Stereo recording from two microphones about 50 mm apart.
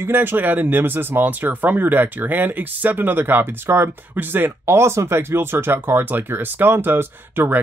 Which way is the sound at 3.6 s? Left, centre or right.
Right.